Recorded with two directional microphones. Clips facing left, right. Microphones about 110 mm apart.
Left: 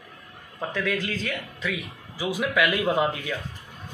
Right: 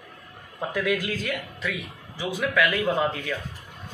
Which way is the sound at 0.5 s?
10° right (ahead or behind).